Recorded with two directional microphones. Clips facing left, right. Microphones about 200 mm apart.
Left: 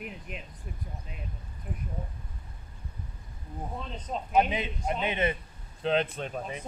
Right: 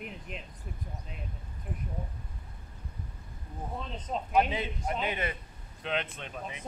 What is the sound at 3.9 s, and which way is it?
Speech, centre (ahead or behind).